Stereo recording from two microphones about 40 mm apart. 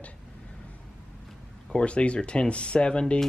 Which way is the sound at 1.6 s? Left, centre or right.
Left.